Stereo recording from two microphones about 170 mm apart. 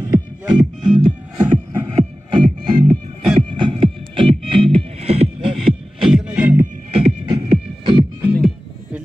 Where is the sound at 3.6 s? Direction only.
30° right (ahead or behind).